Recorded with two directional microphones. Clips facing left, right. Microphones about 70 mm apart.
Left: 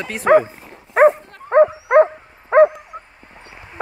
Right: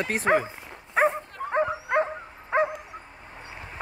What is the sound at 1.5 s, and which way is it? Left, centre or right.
Dog, left.